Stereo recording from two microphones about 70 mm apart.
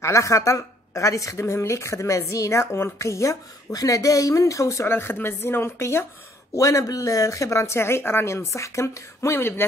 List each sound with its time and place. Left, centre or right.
0.0 s speech: left
3.7 s speech: left
4.8 s speech: left
6.5 s speech: left